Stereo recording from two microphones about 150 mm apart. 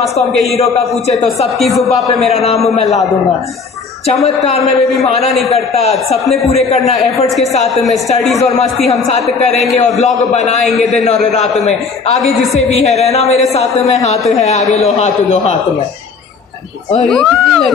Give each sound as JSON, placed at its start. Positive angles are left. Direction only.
{"t": 0.6, "sound": "a man's voice", "side_deg": 45}
{"t": 1.6, "sound": "speech", "side_deg": 0}
{"t": 2.3, "sound": "a man's voice", "side_deg": 45}
{"t": 2.6, "sound": "speech", "side_deg": 0}
{"t": 5.0, "sound": "a man's voice", "side_deg": 45}
{"t": 7.7, "sound": "speech", "side_deg": 0}
{"t": 10.3, "sound": "a man's voice", "side_deg": 50}
{"t": 10.6, "sound": "speech", "side_deg": 0}
{"t": 12.5, "sound": "a man's voice", "side_deg": 45}
{"t": 14.4, "sound": "a man's voice", "side_deg": 50}
{"t": 17.0, "sound": "speech", "side_deg": 5}